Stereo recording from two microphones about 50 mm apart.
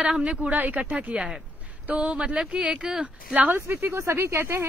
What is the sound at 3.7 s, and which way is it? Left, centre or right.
Speech, right.